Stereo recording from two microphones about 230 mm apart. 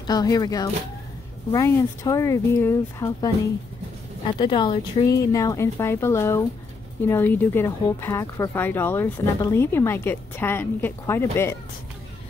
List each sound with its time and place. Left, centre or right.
0.0 s speech: centre